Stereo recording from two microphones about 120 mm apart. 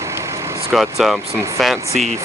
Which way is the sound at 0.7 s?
5° right (ahead or behind).